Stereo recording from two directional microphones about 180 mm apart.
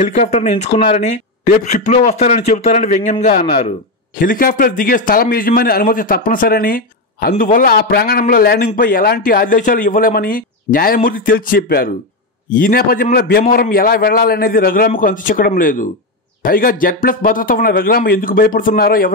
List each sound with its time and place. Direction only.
0.0 s a man's voice: 40° left (ahead or behind)
4.2 s a man's voice: 50° left (ahead or behind)